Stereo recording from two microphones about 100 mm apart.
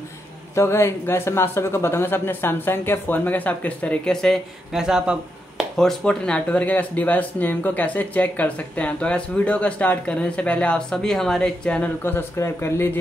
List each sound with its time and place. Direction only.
0.6 s speech: 25° left (ahead or behind); by 4.4 s 5° left (ahead or behind)
4.7 s speech: 5° right (ahead or behind)
5.8 s speech: 5° left (ahead or behind)
12.0 s speech: 25° left (ahead or behind)